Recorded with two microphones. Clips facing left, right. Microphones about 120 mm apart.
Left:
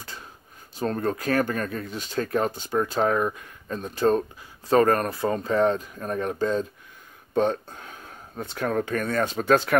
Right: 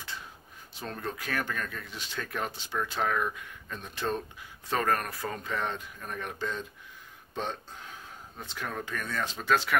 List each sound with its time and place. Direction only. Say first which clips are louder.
0.7 s speech: left 11 dB; 45° left (ahead or behind)
7.3 s speech: left 12 dB; 50° left (ahead or behind)